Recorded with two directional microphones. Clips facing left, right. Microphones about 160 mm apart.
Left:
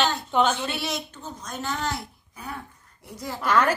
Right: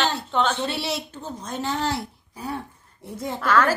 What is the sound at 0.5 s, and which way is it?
Speech, 30° right (ahead or behind).